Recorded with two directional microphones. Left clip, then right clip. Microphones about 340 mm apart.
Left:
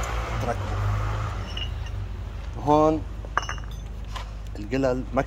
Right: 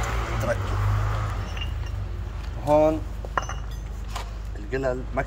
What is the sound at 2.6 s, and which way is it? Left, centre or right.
Speech, centre.